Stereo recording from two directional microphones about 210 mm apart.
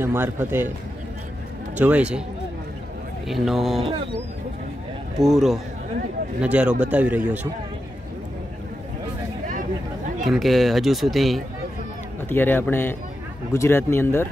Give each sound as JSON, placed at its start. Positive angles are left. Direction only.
{"t": 0.0, "sound": "speech", "side_deg": -10}
{"t": 1.8, "sound": "speech", "side_deg": -5}
{"t": 3.3, "sound": "speech", "side_deg": 0}
{"t": 5.2, "sound": "speech", "side_deg": 0}
{"t": 9.5, "sound": "a sound", "side_deg": -40}
{"t": 10.2, "sound": "speech", "side_deg": 0}